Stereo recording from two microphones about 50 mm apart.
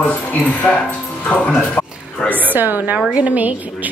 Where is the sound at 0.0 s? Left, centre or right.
Left.